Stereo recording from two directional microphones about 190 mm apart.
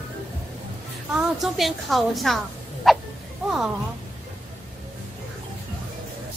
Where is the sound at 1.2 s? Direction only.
Centre (ahead or behind).